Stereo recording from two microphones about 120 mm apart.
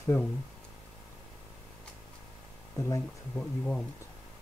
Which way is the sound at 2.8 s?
25° left (ahead or behind).